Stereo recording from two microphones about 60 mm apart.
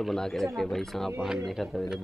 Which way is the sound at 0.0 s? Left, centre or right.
Centre.